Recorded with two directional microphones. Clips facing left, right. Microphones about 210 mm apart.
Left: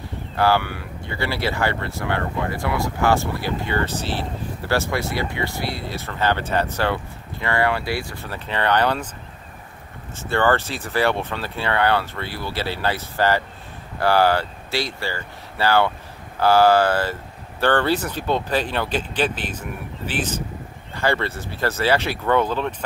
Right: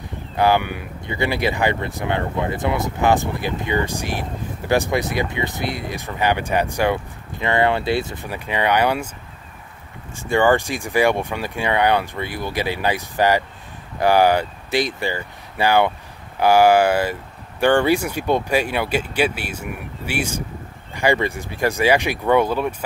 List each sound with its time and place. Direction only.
0.4 s speech: 20° right (ahead or behind)
10.1 s speech: 15° right (ahead or behind)